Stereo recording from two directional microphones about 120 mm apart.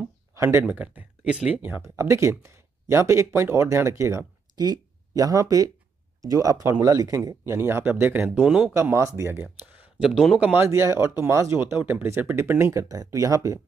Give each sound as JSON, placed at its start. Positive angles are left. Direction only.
{"t": 0.3, "sound": "speech", "side_deg": -20}
{"t": 1.8, "sound": "speech", "side_deg": -25}
{"t": 8.7, "sound": "speech", "side_deg": -25}
{"t": 10.5, "sound": "speech", "side_deg": -20}